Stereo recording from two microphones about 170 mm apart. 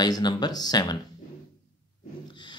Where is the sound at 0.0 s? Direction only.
25° left (ahead or behind).